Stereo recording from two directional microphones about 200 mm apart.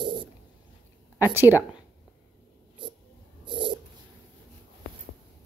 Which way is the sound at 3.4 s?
25° right (ahead or behind).